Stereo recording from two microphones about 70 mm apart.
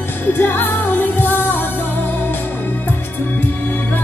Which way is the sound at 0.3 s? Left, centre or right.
Left.